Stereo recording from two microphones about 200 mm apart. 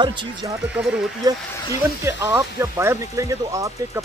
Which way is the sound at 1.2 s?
20° right (ahead or behind).